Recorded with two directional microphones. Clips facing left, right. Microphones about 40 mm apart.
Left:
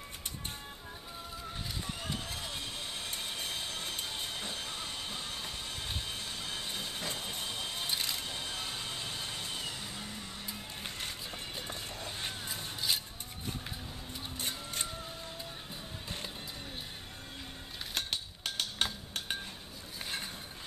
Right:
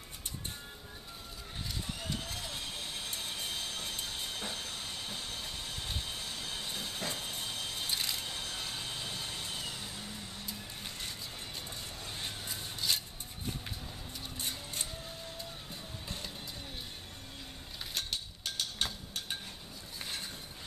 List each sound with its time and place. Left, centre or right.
2.0 s vehicle: centre
12.2 s rub: centre
17.9 s a sound: left